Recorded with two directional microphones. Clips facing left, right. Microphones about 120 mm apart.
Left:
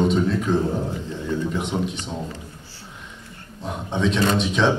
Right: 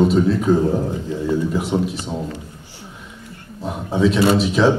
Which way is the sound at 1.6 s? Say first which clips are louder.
Right 5 dB; 5° right (ahead or behind).